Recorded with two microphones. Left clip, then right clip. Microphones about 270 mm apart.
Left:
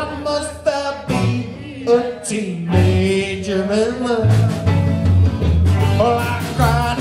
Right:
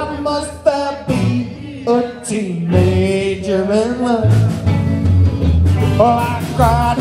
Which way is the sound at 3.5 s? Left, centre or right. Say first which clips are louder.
Right 2 dB; centre.